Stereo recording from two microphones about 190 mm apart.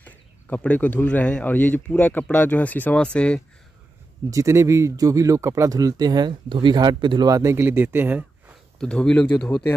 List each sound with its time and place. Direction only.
0.0 s speech: 10° left (ahead or behind)
4.3 s speech: 15° right (ahead or behind)
8.7 s speech: 5° left (ahead or behind)